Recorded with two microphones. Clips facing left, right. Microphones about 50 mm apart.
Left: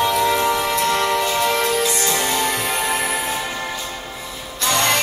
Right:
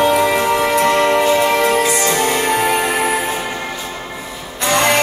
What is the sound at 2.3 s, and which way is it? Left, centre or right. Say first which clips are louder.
Music: right 6 dB; right.